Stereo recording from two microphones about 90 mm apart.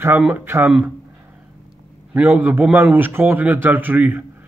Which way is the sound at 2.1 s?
20° right (ahead or behind).